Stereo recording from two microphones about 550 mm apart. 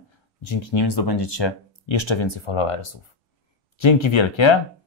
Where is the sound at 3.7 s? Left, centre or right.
Left.